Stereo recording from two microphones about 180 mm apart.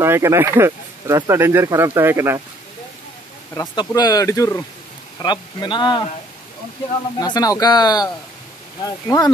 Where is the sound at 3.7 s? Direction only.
25° left (ahead or behind).